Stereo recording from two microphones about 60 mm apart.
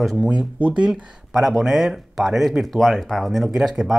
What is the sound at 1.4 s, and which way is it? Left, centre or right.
Speech, centre.